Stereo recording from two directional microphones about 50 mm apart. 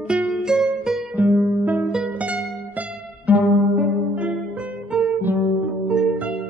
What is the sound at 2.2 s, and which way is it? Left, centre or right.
Music, right.